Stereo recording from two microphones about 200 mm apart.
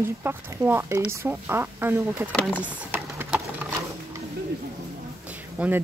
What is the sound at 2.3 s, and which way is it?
Speech, 5° left (ahead or behind).